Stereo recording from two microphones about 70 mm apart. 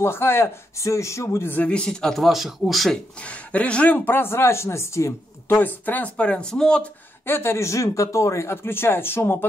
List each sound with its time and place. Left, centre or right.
0.0 s speech: left
1.7 s speech: centre
3.2 s speech: centre; by 5.6 s left
5.6 s speech: left
7.2 s speech: left